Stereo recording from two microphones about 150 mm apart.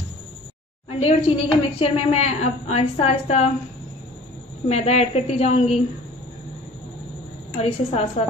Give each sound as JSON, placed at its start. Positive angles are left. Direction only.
{"t": 1.0, "sound": "a woman's voice", "side_deg": 40}
{"t": 4.6, "sound": "a woman's voice", "side_deg": 45}
{"t": 7.5, "sound": "a woman's voice", "side_deg": 45}